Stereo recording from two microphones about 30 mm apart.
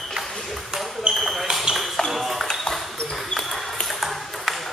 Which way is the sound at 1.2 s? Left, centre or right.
Centre.